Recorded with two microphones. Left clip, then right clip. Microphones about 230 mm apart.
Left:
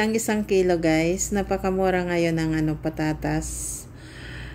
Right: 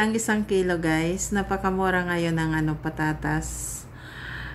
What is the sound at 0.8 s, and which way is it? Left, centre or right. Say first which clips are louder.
Speech: left 3 dB; right.